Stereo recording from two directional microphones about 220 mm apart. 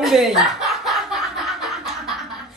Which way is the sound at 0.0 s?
Centre (ahead or behind).